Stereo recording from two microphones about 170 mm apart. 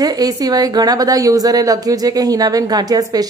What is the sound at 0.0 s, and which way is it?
Speech, 20° right (ahead or behind).